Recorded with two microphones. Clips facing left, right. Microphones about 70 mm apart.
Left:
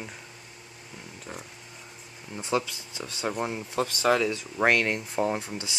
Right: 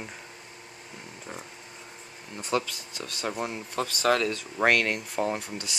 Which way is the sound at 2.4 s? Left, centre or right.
Centre.